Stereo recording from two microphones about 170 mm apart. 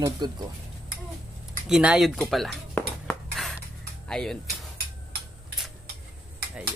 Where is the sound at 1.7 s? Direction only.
5° right (ahead or behind).